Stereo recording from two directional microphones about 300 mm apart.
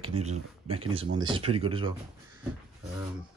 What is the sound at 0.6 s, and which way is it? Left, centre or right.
Speech, centre.